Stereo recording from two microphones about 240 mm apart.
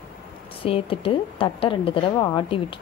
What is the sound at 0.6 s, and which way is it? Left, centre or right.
A woman's voice, left.